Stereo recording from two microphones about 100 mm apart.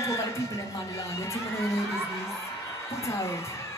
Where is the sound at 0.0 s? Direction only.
30° left (ahead or behind).